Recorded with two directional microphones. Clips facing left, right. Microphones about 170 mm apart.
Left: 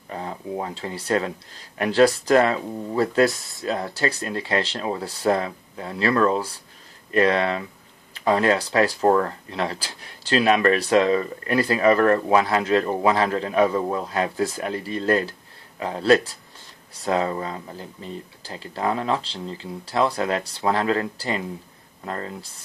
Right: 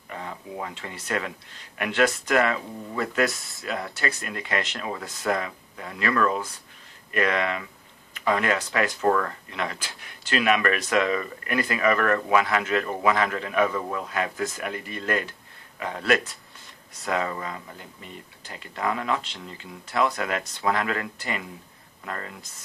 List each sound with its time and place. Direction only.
0.1 s speech: 35° left (ahead or behind)
3.3 s speech: centre (ahead or behind)
3.6 s speech: 25° left (ahead or behind)